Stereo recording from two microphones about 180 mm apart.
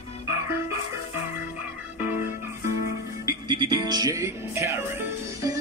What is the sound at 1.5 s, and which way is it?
Music, 10° right (ahead or behind).